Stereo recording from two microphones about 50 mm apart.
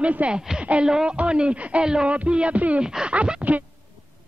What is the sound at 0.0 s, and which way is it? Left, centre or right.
Speech, right.